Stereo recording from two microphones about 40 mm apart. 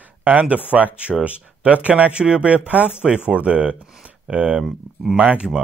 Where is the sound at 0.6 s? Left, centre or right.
Right.